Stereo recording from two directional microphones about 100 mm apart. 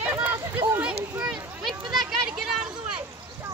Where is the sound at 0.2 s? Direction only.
20° right (ahead or behind).